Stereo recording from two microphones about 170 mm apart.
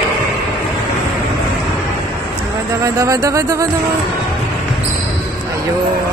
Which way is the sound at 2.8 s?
20° right (ahead or behind).